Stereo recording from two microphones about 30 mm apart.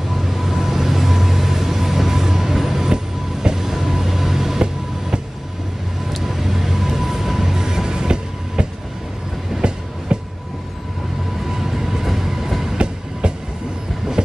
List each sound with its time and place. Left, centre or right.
0.1 s vehicle: centre
6.1 s music: centre; by 8.6 s right
9.6 s train: right
11.4 s train: centre
12.7 s train: right